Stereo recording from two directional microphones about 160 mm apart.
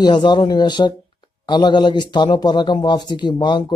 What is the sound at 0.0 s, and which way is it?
A man's voice, 25° left (ahead or behind).